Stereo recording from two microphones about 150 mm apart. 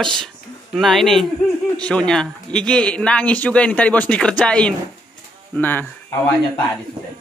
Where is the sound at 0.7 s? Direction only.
Centre (ahead or behind).